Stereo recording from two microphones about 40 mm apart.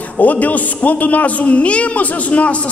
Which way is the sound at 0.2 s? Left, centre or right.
Left.